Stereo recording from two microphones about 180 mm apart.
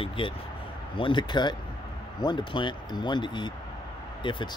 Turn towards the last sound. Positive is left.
turn(degrees=25)  # may be behind; listen again after turning